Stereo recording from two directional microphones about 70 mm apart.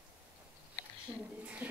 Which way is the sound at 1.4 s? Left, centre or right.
Centre.